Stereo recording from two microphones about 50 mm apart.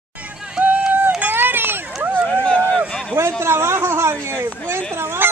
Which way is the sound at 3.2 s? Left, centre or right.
Right.